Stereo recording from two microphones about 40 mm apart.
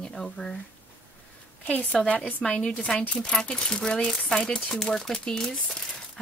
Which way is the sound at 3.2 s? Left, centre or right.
Left.